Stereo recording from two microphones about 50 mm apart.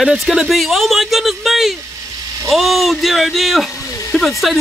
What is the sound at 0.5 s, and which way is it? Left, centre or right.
Speech, centre.